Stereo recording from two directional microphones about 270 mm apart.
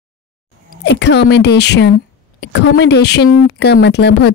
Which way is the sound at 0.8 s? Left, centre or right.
Left.